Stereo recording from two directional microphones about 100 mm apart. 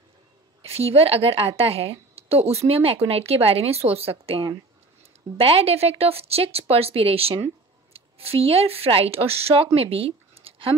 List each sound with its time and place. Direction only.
0.6 s a woman's voice: 80° right